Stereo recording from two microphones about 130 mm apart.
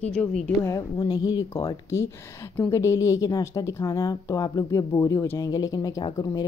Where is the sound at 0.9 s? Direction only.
35° left (ahead or behind).